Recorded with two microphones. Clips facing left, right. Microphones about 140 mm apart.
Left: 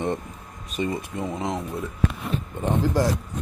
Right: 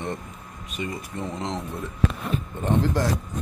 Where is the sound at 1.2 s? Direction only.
10° left (ahead or behind).